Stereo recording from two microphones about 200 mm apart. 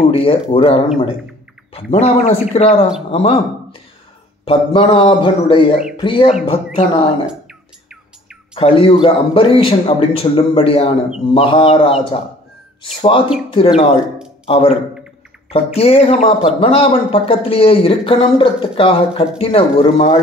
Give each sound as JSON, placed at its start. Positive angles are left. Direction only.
{"t": 0.1, "sound": "speech", "side_deg": 30}
{"t": 4.5, "sound": "speech", "side_deg": 25}
{"t": 7.2, "sound": "a sound", "side_deg": -5}
{"t": 8.5, "sound": "speech", "side_deg": 30}
{"t": 14.5, "sound": "speech", "side_deg": 30}